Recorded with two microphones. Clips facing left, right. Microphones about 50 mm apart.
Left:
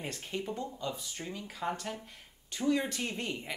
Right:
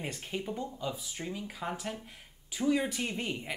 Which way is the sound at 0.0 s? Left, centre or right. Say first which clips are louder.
Right 1 dB; centre.